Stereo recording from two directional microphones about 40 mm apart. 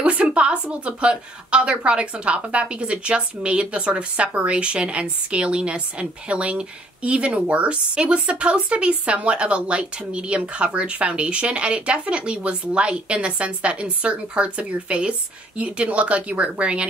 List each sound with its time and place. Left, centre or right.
0.0 s a woman's voice: right